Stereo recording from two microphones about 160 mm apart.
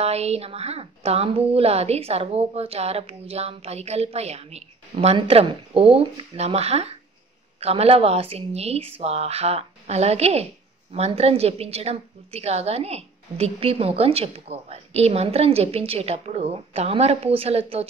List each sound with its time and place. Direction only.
0.0 s speech: 40° right (ahead or behind)